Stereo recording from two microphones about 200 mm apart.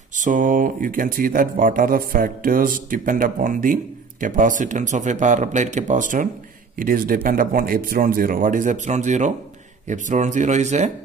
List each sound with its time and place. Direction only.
0.1 s speech: 40° right (ahead or behind)